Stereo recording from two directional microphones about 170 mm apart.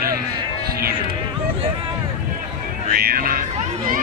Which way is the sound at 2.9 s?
60° right (ahead or behind).